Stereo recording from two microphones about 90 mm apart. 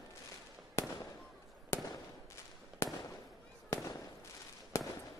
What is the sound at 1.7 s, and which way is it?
Fireworks, 35° left (ahead or behind).